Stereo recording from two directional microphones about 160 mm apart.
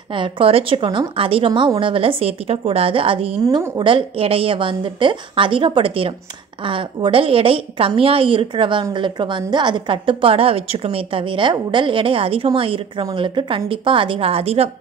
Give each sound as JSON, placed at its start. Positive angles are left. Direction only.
{"t": 0.1, "sound": "a woman's voice", "side_deg": -35}